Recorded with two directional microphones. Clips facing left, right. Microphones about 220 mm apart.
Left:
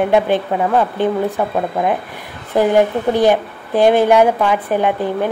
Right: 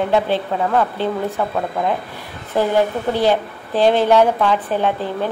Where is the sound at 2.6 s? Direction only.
15° left (ahead or behind).